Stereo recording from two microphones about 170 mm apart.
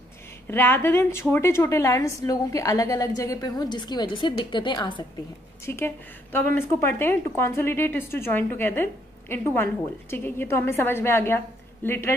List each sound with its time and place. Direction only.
0.5 s a woman's voice: 15° left (ahead or behind)
5.7 s a woman's voice: 15° left (ahead or behind)